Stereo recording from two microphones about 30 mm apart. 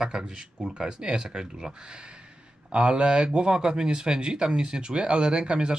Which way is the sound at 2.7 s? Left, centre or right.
Right.